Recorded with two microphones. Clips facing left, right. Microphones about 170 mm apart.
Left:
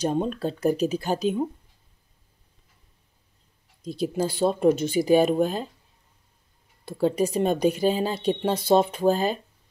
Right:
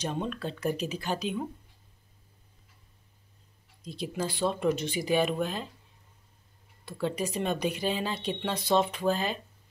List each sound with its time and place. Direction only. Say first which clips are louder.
0.0 s a woman's voice: left 8 dB; 40° left (ahead or behind)
4.0 s a woman's voice: left 7 dB; 40° left (ahead or behind)
6.9 s a woman's voice: left 8 dB; 40° left (ahead or behind)